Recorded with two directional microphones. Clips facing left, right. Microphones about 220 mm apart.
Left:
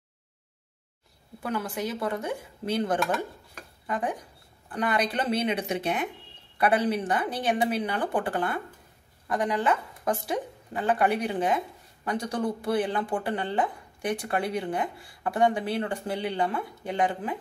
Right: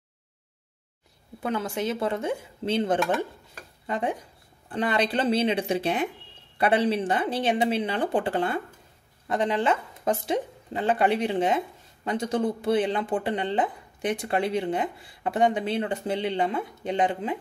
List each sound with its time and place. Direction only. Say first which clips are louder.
1.4 s speech: right 3 dB; 25° right (ahead or behind)